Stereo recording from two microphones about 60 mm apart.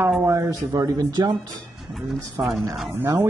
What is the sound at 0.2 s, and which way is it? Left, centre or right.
Speech, right.